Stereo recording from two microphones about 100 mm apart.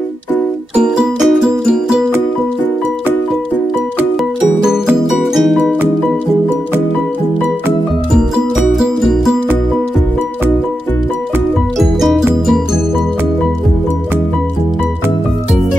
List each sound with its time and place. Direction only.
0.7 s music: 5° right (ahead or behind)
5.3 s music: centre (ahead or behind)
8.5 s music: 5° right (ahead or behind)
11.8 s music: centre (ahead or behind)